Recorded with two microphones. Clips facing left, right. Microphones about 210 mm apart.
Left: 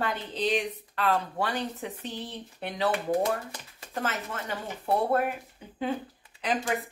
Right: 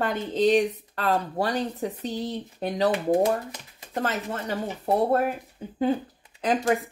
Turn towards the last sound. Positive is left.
turn(degrees=-45)  # may be behind; listen again after turning